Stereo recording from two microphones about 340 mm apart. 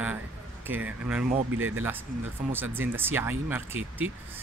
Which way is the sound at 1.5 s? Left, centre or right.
Right.